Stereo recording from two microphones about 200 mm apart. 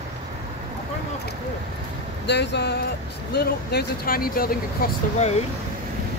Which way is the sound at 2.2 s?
60° left (ahead or behind).